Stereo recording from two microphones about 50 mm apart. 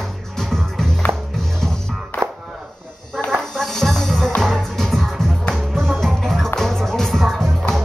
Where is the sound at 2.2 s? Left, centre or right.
Centre.